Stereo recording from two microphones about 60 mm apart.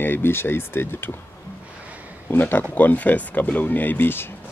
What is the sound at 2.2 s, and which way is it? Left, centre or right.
Speech, left.